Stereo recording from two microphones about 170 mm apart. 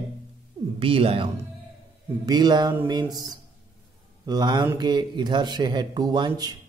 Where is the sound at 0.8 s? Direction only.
35° right (ahead or behind).